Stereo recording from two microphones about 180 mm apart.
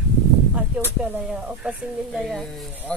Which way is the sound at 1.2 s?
Centre (ahead or behind).